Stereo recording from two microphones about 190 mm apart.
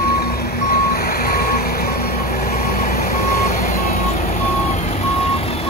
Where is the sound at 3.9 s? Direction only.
35° left (ahead or behind).